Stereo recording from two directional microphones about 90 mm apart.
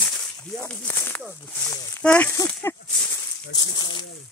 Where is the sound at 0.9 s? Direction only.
25° left (ahead or behind).